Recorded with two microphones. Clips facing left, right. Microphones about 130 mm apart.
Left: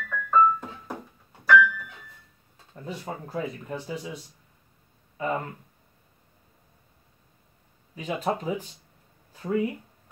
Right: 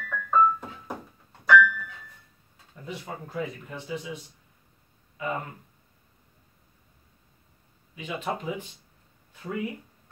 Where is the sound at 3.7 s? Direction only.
40° left (ahead or behind).